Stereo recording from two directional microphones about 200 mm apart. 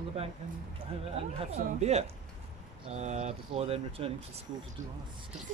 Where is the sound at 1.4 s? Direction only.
35° right (ahead or behind).